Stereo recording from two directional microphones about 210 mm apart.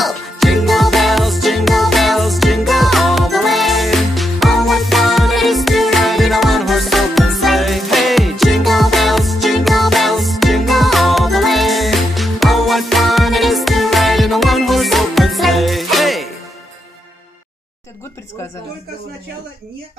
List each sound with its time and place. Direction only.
0.0 s music: centre (ahead or behind)